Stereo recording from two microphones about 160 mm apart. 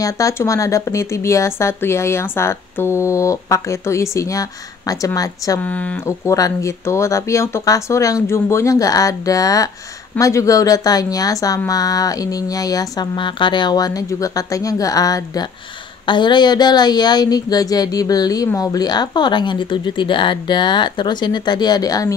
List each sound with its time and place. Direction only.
0.0 s speech: 20° left (ahead or behind)
5.6 s speech: 10° left (ahead or behind)